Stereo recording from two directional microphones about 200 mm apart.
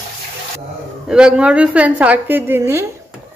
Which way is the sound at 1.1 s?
5° right (ahead or behind).